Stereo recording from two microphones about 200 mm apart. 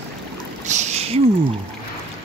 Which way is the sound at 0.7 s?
35° right (ahead or behind).